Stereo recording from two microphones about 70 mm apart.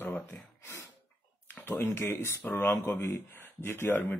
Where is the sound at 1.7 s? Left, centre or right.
Left.